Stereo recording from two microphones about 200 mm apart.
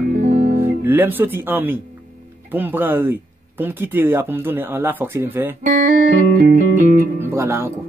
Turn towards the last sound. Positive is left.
turn(degrees=-15)  # may be behind; listen again after turning